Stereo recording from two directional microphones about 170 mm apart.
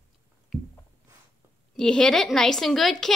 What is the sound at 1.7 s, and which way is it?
A woman's voice, 5° left (ahead or behind).